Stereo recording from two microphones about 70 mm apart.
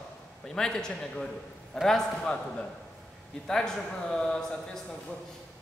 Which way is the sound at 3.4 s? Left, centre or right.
Centre.